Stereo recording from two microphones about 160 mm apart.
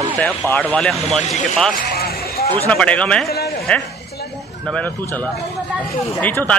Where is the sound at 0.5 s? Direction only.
10° left (ahead or behind).